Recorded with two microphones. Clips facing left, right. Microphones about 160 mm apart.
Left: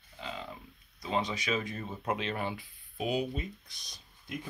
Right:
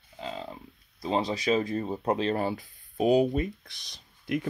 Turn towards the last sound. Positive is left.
turn(degrees=-75)  # may be behind; listen again after turning